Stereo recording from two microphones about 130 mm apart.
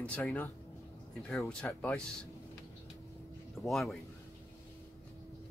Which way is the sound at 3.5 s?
Centre (ahead or behind).